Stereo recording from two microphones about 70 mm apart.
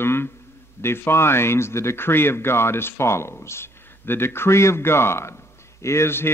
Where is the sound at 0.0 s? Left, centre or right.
Left.